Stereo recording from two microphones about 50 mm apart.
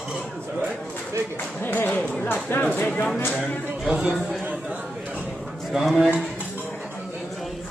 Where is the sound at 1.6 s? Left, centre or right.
Left.